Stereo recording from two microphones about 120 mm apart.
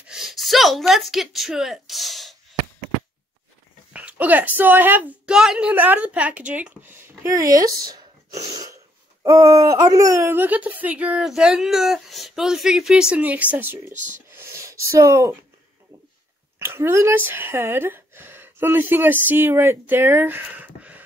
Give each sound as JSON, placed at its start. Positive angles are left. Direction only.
{"t": 0.0, "sound": "a woman's voice", "side_deg": -5}
{"t": 3.9, "sound": "a woman's voice", "side_deg": -10}
{"t": 7.3, "sound": "speech", "side_deg": -30}
{"t": 13.9, "sound": "speech", "side_deg": -90}
{"t": 14.3, "sound": "a sound", "side_deg": -20}
{"t": 16.5, "sound": "speech", "side_deg": -20}